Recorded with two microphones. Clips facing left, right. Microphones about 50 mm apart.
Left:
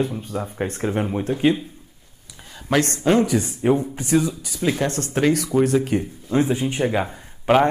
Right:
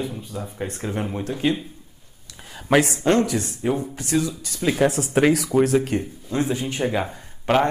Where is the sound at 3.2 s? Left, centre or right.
Centre.